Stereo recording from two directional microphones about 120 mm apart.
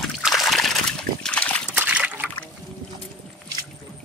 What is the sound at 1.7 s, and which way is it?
Trickle, 10° right (ahead or behind).